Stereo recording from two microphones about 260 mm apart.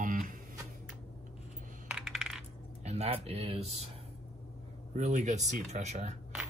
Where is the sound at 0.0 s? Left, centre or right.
Right.